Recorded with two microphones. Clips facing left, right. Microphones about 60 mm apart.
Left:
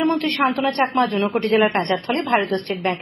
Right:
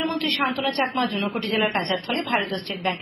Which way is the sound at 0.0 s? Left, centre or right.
Left.